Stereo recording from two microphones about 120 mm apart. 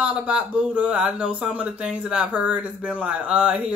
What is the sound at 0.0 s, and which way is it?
Speech, 10° right (ahead or behind).